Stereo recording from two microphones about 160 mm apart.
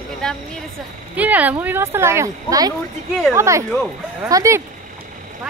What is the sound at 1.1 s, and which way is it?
Speech, 10° right (ahead or behind).